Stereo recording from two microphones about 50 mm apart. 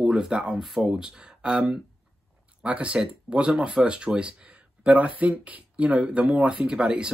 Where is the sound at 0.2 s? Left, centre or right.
Centre.